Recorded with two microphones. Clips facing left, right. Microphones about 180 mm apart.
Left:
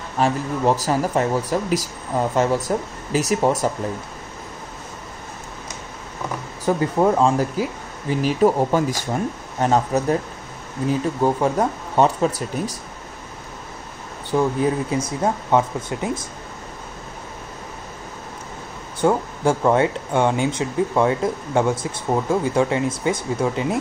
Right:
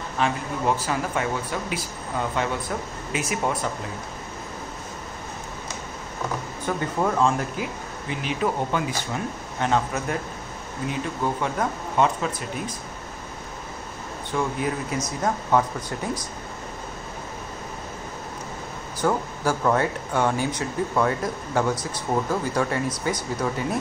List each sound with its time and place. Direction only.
0.2 s speech: 40° left (ahead or behind)
6.6 s speech: 30° left (ahead or behind)
14.3 s speech: 30° left (ahead or behind)
18.9 s speech: 25° left (ahead or behind)